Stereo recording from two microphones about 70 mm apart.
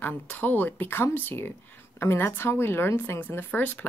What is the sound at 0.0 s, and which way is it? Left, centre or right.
Speech, left.